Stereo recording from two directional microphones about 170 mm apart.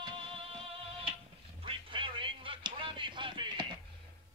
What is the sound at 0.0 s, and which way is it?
Music, 30° right (ahead or behind).